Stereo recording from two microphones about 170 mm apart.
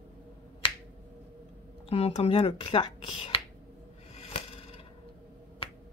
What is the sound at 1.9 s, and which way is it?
Speech, 35° left (ahead or behind).